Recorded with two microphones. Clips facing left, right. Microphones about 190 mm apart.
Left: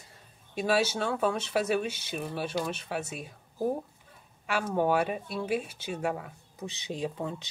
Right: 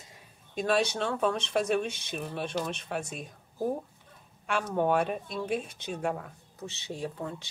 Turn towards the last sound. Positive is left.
turn(degrees=20)  # may be behind; listen again after turning